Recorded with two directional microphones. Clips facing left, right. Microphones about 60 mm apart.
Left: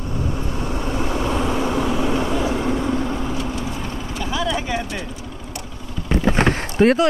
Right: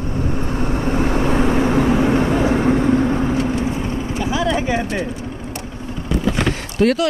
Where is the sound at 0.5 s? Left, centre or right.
Right.